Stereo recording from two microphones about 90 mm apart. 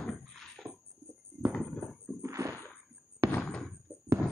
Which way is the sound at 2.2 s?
35° right (ahead or behind).